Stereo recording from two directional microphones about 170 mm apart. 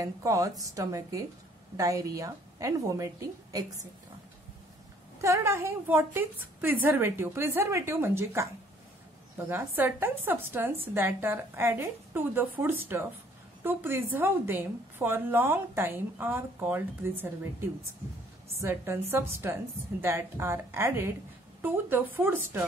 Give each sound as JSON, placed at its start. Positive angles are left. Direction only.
{"t": 0.0, "sound": "a woman's voice", "side_deg": -20}
{"t": 5.2, "sound": "a woman's voice", "side_deg": -15}
{"t": 9.5, "sound": "a woman's voice", "side_deg": -15}